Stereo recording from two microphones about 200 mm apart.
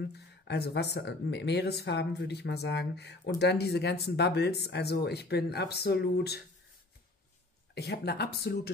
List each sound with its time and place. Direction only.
0.5 s speech: 55° left (ahead or behind)
7.7 s speech: 55° left (ahead or behind)